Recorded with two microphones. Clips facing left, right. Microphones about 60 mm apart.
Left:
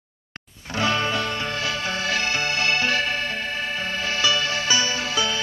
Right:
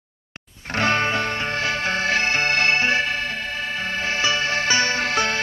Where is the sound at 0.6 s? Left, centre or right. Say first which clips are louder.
Right 2 dB; right.